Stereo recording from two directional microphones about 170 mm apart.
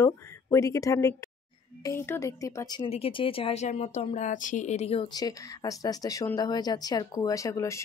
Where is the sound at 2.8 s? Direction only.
30° left (ahead or behind).